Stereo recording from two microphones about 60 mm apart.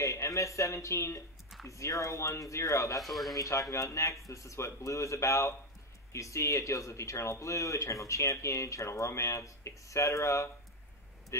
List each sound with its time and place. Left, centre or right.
0.0 s speech: left
3.0 s speech: centre
3.3 s speech: left